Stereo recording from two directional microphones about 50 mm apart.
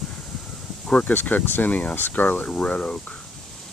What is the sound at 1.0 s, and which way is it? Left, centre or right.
Speech, left.